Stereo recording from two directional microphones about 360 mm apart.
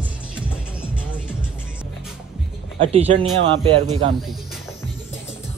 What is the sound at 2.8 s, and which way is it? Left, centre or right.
Speech, centre.